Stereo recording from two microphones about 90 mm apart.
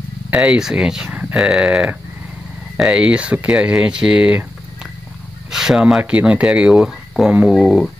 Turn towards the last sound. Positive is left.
turn(degrees=0)  # may be behind; listen again after turning